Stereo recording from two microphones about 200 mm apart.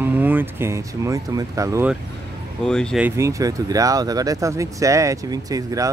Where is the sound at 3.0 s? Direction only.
15° right (ahead or behind).